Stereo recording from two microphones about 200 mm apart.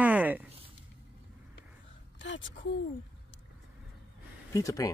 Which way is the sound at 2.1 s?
65° left (ahead or behind).